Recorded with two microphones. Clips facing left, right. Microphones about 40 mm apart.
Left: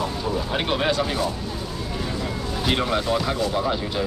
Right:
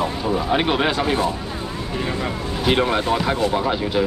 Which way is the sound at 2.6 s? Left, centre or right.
Right.